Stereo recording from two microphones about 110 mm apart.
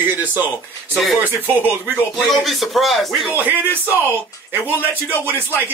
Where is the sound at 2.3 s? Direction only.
Centre (ahead or behind).